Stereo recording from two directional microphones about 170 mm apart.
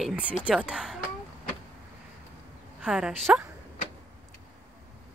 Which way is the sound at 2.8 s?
5° right (ahead or behind).